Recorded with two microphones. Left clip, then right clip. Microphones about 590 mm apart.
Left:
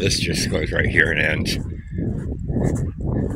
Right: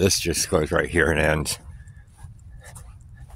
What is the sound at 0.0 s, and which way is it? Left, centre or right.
Speech, right.